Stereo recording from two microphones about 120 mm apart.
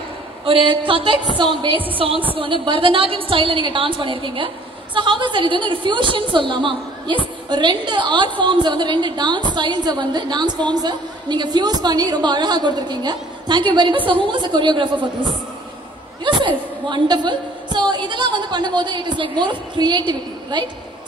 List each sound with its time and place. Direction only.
0.5 s a woman's voice: 45° right (ahead or behind)